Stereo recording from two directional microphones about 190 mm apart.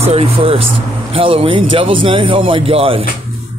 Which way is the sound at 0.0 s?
30° right (ahead or behind).